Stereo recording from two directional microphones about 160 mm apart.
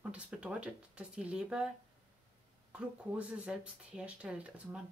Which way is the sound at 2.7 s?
5° right (ahead or behind).